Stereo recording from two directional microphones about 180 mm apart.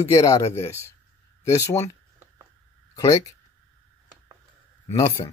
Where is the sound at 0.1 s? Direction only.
15° left (ahead or behind).